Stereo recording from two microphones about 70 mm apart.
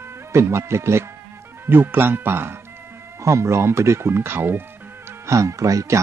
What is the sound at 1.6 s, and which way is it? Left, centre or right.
Speech, right.